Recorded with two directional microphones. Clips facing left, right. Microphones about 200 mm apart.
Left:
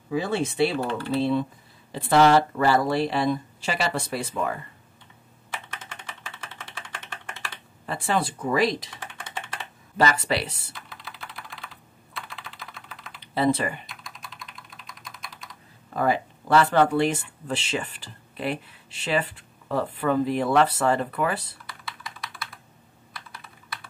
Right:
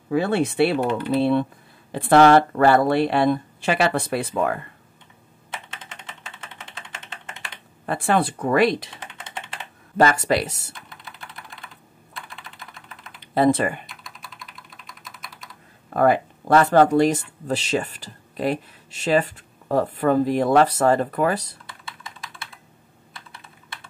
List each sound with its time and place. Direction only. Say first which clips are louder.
0.1 s speech: right 5 dB; 60° right (ahead or behind)
0.7 s speech: right 5 dB; 20° right (ahead or behind)
1.1 s speech: right 3 dB; 60° right (ahead or behind)
5.5 s typing: even; 20° right (ahead or behind)
7.8 s speech: right 5 dB; 55° right (ahead or behind)
9.0 s computer keyboard: even; 20° right (ahead or behind)
9.9 s speech: right 5 dB; 45° right (ahead or behind)
13.2 s speech: right 5 dB; 50° right (ahead or behind)
13.8 s typing: even; centre (ahead or behind)
15.0 s computer keyboard: even; centre (ahead or behind)
15.9 s speech: right 6 dB; 55° right (ahead or behind)
21.6 s computer keyboard: even; 25° right (ahead or behind)